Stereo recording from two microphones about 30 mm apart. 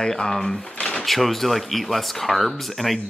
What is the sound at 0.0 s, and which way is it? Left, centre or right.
Speech, centre.